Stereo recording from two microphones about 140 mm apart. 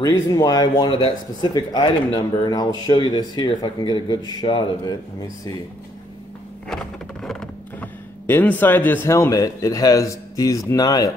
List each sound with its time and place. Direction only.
0.0 s speech: 20° left (ahead or behind)
6.7 s a sound: 5° left (ahead or behind)
8.3 s speech: 15° left (ahead or behind)